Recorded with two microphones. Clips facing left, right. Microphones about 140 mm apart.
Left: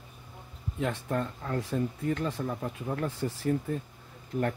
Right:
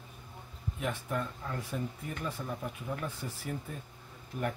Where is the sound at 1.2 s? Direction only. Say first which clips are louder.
Left 6 dB; 60° left (ahead or behind); by 3.3 s 80° left.